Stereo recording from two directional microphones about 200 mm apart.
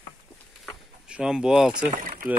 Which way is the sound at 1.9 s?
40° right (ahead or behind).